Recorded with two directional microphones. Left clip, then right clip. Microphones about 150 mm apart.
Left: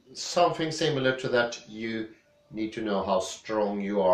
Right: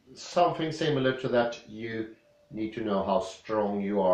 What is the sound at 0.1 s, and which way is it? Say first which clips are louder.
Speech: left 1 dB; 5° right (ahead or behind).